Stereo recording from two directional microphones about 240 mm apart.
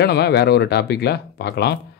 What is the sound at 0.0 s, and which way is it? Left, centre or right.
Speech, left.